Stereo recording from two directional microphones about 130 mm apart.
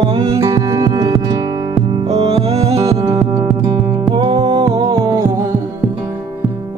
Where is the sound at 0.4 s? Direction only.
25° right (ahead or behind).